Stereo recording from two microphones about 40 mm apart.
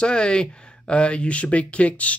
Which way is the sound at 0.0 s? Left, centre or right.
Left.